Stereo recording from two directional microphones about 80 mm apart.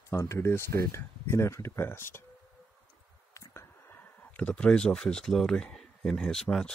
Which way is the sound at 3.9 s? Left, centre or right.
Left.